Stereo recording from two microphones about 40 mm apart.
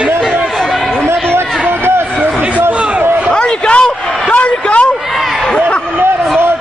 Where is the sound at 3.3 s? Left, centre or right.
Left.